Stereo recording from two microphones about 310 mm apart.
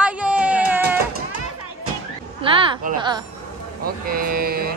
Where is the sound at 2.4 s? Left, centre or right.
Centre.